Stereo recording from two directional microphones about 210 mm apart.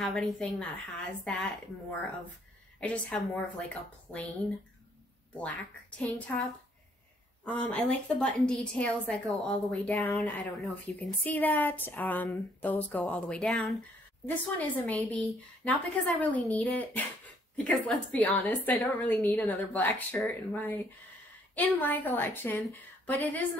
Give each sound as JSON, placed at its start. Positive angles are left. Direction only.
{"t": 0.0, "sound": "a woman's voice", "side_deg": 0}
{"t": 2.8, "sound": "a woman's voice", "side_deg": 5}
{"t": 7.6, "sound": "a woman's voice", "side_deg": 5}
{"t": 10.0, "sound": "speech", "side_deg": 15}
{"t": 10.6, "sound": "speech", "side_deg": 5}